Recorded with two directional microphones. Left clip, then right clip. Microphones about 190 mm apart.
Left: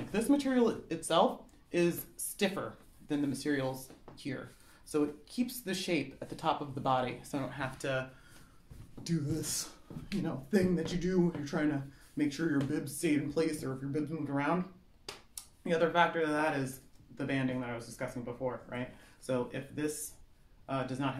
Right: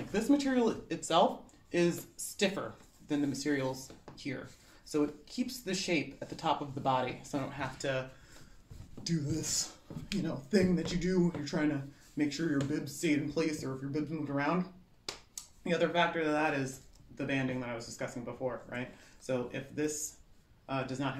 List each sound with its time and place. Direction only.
0.1 s speech: 20° left (ahead or behind)
9.0 s speech: 20° left (ahead or behind)